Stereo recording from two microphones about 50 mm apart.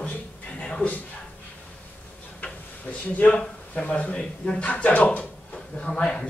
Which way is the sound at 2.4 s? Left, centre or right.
Left.